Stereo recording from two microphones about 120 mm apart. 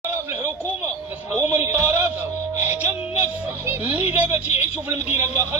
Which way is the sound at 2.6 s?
15° right (ahead or behind).